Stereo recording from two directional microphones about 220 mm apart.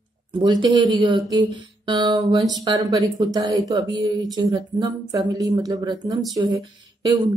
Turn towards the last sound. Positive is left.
turn(degrees=-20)  # may be behind; listen again after turning